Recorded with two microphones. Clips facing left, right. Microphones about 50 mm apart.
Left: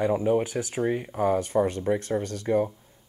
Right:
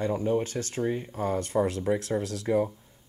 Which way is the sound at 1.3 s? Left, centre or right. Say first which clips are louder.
Left 2 dB; centre.